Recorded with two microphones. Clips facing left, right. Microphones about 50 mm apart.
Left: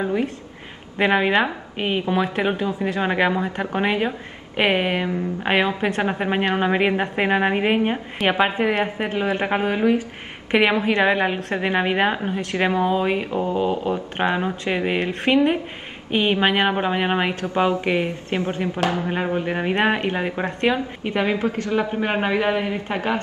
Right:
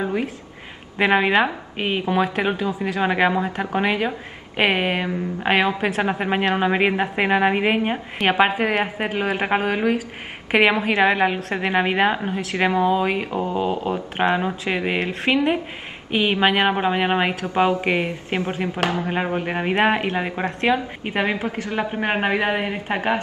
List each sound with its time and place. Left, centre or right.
0.9 s a woman's voice: centre
21.0 s a man's voice: right